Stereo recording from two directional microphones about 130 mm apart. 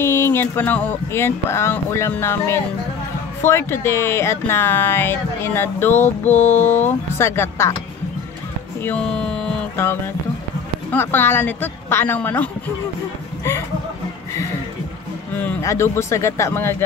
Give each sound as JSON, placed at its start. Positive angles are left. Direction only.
{"t": 0.0, "sound": "speech", "side_deg": 20}
{"t": 8.8, "sound": "mantra", "side_deg": 10}
{"t": 9.8, "sound": "speech", "side_deg": 20}
{"t": 15.3, "sound": "speech", "side_deg": 20}